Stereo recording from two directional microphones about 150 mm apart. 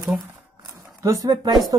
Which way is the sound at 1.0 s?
25° right (ahead or behind).